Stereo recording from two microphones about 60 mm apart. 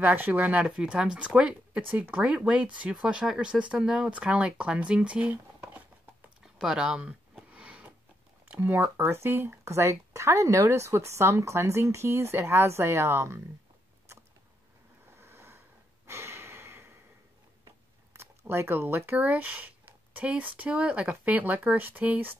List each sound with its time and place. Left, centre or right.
0.0 s speech: right
1.8 s speech: right
6.4 s a sound: centre
8.5 s speech: right
9.7 s speech: right
15.0 s a sound: right
16.1 s breathing: right
18.1 s speech: right